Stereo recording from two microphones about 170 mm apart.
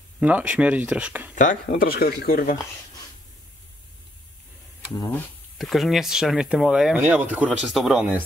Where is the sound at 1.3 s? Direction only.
50° left (ahead or behind).